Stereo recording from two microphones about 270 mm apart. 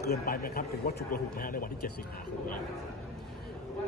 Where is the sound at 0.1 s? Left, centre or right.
Left.